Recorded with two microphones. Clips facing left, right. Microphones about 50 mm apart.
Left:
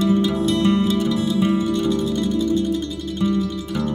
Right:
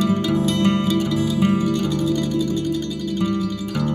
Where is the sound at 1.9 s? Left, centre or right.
Left.